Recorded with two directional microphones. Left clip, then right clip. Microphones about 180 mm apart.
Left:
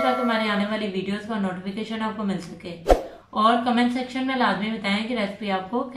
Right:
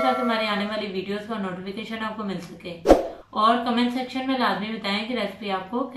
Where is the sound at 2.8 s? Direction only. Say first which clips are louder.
Right 3 dB; centre (ahead or behind).